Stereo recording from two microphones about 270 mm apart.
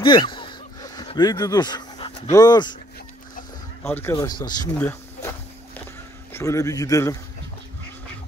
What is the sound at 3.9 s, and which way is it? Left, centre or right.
Speech, centre.